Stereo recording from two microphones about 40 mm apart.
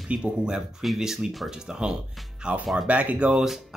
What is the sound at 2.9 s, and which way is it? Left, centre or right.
Speech, right.